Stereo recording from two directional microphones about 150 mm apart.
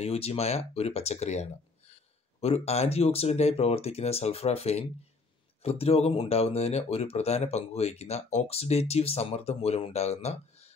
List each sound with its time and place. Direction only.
0.0 s speech: 45° left (ahead or behind)